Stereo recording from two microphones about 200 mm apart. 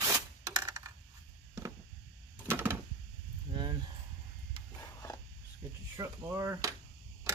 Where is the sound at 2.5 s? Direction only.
10° right (ahead or behind).